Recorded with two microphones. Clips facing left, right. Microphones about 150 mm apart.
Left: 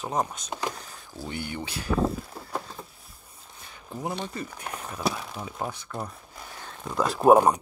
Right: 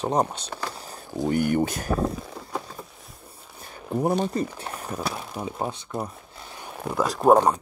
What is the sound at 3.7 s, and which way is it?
Speech, 45° right (ahead or behind).